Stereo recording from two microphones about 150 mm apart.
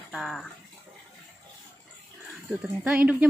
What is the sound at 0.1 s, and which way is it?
Speech, centre (ahead or behind).